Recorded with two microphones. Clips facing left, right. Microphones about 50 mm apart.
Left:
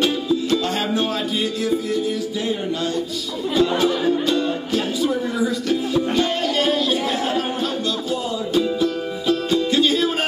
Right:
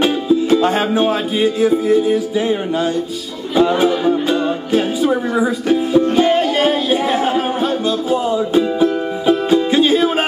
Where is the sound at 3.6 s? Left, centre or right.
Right.